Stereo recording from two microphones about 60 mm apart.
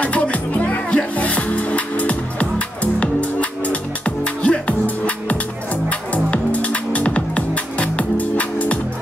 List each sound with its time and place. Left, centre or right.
0.0 s music: left